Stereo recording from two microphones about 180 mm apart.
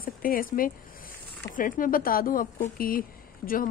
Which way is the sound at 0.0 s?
50° left (ahead or behind).